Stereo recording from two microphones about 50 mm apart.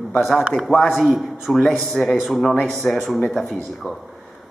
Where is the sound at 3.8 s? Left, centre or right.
Left.